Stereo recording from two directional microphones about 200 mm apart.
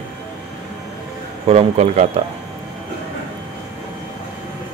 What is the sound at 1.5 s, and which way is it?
Speech, 30° right (ahead or behind).